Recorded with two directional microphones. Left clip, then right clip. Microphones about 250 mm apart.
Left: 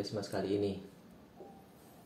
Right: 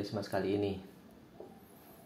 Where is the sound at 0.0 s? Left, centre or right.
Centre.